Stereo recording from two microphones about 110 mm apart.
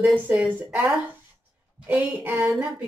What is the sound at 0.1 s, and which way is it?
Speech, 10° right (ahead or behind).